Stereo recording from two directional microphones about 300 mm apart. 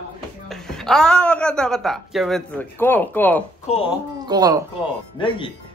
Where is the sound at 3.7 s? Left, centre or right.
Left.